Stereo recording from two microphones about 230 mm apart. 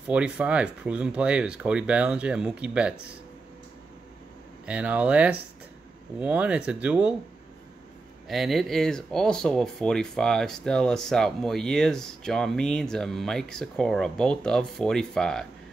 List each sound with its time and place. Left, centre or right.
0.0 s speech: centre
4.6 s speech: centre
8.3 s speech: centre